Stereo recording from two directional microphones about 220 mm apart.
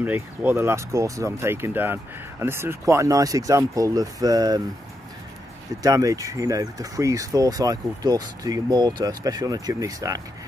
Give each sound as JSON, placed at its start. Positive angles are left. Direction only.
{"t": 0.0, "sound": "speech", "side_deg": -10}
{"t": 5.8, "sound": "speech", "side_deg": -15}